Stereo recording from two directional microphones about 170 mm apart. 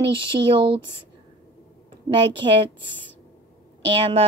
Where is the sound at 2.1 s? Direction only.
30° right (ahead or behind).